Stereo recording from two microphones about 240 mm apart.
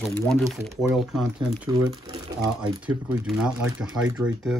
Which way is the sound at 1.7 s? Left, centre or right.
Centre.